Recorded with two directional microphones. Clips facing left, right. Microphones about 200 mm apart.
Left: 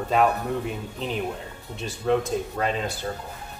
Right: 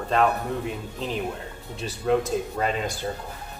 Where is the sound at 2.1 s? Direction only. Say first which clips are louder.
Even; 5° right (ahead or behind).